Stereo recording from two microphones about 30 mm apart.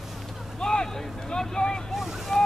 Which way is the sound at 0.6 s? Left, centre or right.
Left.